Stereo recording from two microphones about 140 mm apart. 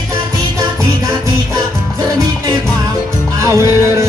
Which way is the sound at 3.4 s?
20° right (ahead or behind).